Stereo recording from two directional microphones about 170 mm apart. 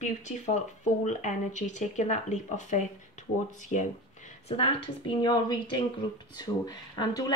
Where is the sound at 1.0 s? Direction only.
45° left (ahead or behind).